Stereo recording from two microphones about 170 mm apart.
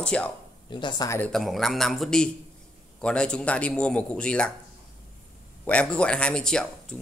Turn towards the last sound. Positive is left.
turn(degrees=5)  # may be behind; listen again after turning